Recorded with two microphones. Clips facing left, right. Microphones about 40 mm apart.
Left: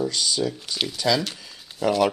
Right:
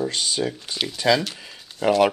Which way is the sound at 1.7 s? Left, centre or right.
Centre.